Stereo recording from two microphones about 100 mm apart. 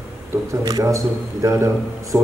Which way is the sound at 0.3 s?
35° right (ahead or behind).